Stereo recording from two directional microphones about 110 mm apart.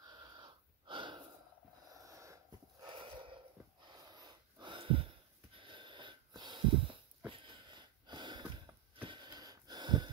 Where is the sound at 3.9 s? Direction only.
40° right (ahead or behind).